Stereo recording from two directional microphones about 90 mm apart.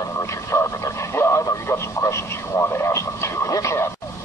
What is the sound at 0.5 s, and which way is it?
Radio, 25° left (ahead or behind).